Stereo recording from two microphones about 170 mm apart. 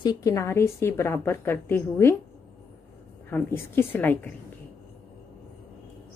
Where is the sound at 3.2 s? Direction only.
10° left (ahead or behind).